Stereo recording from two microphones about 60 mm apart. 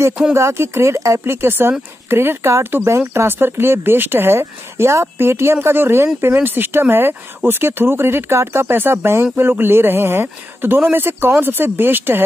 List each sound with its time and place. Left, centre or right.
0.3 s speech: right